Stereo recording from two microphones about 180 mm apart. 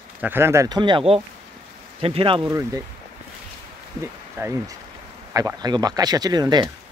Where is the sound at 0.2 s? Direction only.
10° right (ahead or behind); by 2.5 s 30° right (ahead or behind).